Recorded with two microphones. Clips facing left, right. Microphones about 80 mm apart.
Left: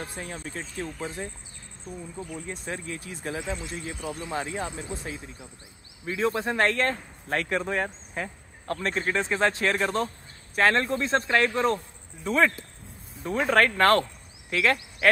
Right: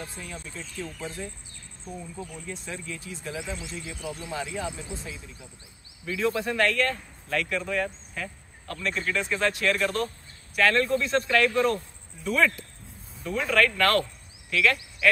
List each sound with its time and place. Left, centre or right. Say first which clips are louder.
0.0 s speech: left 3 dB; left
2.4 s speech: left 2 dB; left
6.0 s speech: left 1 dB; left